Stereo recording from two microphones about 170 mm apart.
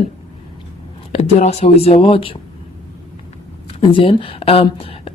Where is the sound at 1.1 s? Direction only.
40° left (ahead or behind).